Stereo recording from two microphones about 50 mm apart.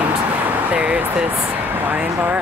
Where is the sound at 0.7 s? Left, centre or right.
Right.